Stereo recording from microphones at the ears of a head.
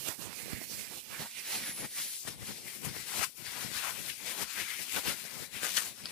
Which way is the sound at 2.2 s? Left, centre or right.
Left.